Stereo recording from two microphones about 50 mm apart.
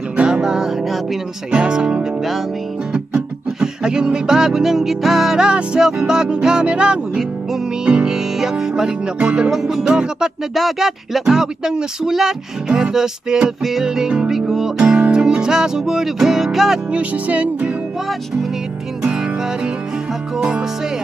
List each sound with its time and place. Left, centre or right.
0.2 s music: centre
3.6 s music: centre
9.5 s music: centre
10.5 s speech: centre
16.9 s music: right
20.3 s music: centre